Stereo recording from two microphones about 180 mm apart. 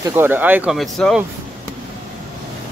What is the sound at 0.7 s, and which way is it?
Mechanisms, centre (ahead or behind).